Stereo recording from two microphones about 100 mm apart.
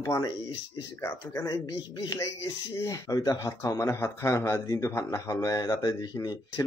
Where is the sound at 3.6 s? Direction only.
25° left (ahead or behind).